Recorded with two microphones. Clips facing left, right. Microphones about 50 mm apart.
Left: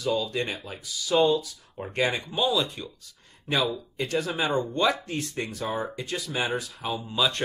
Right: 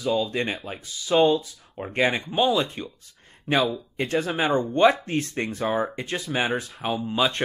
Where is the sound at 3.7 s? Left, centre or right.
Right.